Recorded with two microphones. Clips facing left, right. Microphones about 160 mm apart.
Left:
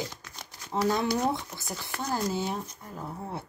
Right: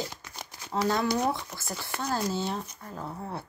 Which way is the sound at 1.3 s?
20° left (ahead or behind).